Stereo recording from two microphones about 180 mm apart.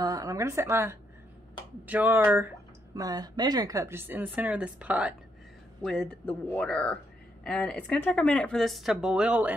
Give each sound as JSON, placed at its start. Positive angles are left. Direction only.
{"t": 0.0, "sound": "speech", "side_deg": -20}
{"t": 5.9, "sound": "speech", "side_deg": 5}